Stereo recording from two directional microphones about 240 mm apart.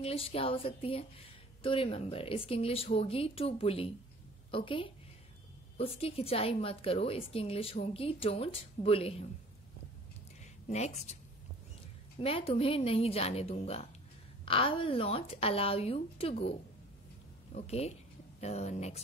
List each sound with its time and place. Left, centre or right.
0.0 s a woman's voice: left
10.4 s speech: left
12.2 s a woman's voice: left
17.6 s a woman's voice: left